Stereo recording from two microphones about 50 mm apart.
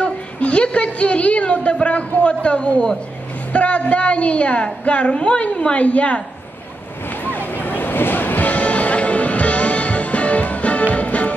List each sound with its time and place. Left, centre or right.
0.0 s a sound: left
2.1 s a woman's voice: left
7.2 s music: left